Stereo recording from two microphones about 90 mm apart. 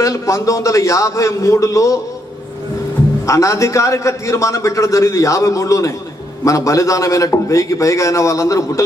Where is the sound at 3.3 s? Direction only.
35° left (ahead or behind).